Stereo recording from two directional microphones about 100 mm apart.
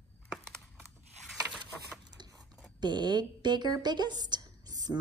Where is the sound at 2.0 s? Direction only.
45° right (ahead or behind).